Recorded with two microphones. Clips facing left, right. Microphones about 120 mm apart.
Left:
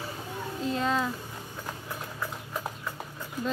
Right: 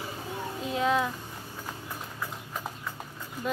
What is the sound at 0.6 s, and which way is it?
Speech, 5° right (ahead or behind).